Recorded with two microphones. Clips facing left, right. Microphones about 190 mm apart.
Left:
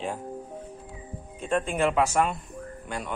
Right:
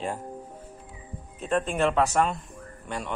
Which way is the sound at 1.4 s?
5° left (ahead or behind).